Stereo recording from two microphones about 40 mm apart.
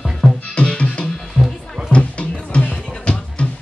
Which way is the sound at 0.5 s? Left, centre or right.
Left.